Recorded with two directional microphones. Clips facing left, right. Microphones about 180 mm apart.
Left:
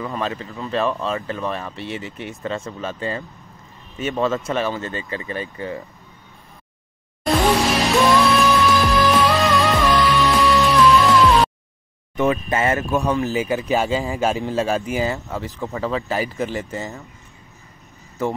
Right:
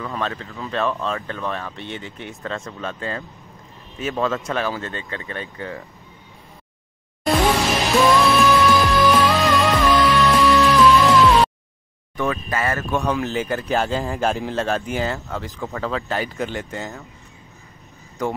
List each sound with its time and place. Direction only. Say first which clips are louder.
0.0 s speech: left 1 dB; 5° left (ahead or behind)
7.2 s music: left 1 dB; centre (ahead or behind)
12.2 s speech: left 4 dB; 20° left (ahead or behind)
12.9 s speech: left 2 dB; centre (ahead or behind)
18.2 s speech: left 1 dB; 5° left (ahead or behind)